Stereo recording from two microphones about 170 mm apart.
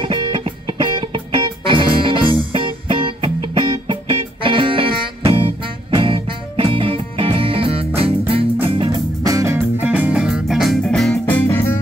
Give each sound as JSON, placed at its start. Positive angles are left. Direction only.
{"t": 0.0, "sound": "music", "side_deg": -30}
{"t": 9.3, "sound": "music", "side_deg": -15}